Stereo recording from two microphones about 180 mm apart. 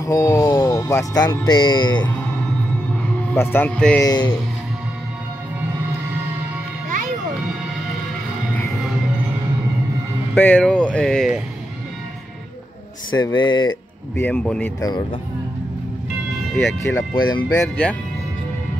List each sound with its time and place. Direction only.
0.0 s speech: 15° left (ahead or behind)
3.3 s a man's voice: 10° left (ahead or behind)
4.0 s speech: 20° left (ahead or behind)
10.3 s speech: 10° left (ahead or behind)
13.2 s speech: 25° left (ahead or behind)
14.1 s a man's voice: 10° left (ahead or behind)
14.8 s speech: 20° left (ahead or behind)
16.5 s a man's voice: 15° left (ahead or behind)
17.1 s speech: 25° left (ahead or behind)
17.6 s a man's voice: 10° left (ahead or behind)